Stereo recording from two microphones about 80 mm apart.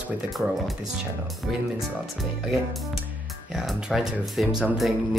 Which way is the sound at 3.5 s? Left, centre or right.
Centre.